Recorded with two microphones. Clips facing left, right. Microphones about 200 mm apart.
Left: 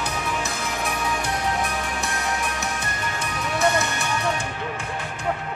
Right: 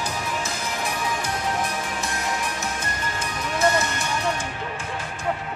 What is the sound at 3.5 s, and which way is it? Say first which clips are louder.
Music: even; 65° left (ahead or behind).